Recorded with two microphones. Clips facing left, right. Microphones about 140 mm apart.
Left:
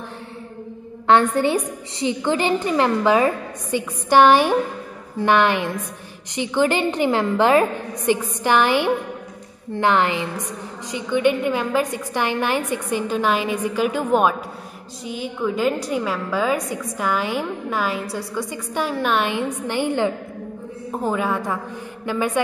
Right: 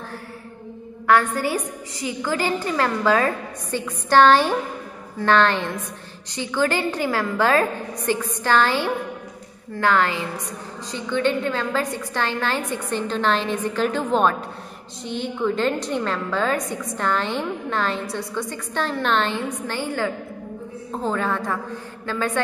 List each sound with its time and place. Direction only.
1.0 s a woman's voice: 25° left (ahead or behind)